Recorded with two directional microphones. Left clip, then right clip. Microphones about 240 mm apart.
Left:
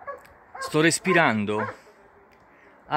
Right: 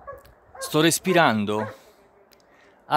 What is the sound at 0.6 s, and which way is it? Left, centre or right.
Speech, centre.